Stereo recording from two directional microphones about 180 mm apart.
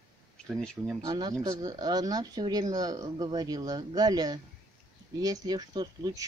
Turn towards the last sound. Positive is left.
turn(degrees=-20)  # may be behind; listen again after turning